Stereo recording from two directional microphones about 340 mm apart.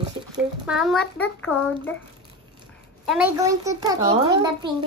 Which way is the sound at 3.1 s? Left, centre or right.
Centre.